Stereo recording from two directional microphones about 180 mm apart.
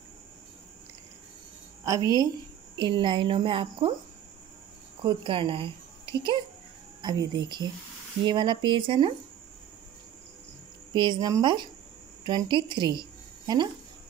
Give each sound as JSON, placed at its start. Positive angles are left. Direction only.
{"t": 1.9, "sound": "speech", "side_deg": -20}
{"t": 5.0, "sound": "speech", "side_deg": -30}
{"t": 10.9, "sound": "speech", "side_deg": -25}